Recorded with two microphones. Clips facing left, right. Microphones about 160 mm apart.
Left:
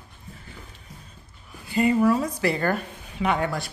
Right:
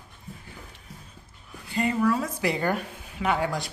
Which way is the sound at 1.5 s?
5° left (ahead or behind).